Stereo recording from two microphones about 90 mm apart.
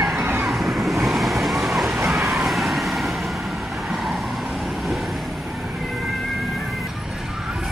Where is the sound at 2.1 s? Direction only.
Centre (ahead or behind).